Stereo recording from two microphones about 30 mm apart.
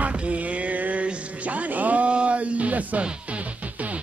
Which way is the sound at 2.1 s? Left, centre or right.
Right.